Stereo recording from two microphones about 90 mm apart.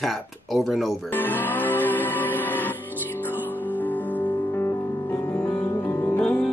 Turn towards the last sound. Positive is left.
turn(degrees=15)  # may be behind; listen again after turning